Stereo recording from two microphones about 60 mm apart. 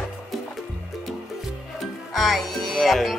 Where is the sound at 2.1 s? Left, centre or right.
Centre.